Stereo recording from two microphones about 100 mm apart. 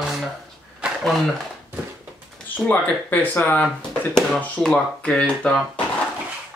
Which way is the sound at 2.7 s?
20° left (ahead or behind).